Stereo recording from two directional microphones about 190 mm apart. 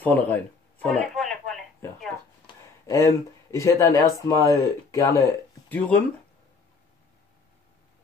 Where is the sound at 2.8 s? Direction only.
15° left (ahead or behind).